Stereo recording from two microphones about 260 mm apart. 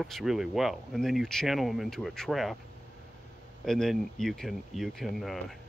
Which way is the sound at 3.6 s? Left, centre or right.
Centre.